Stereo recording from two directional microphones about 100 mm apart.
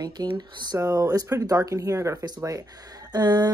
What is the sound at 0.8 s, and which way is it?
Speech, 30° right (ahead or behind).